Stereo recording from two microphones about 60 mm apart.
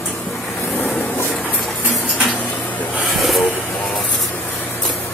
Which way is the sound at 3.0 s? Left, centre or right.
Centre.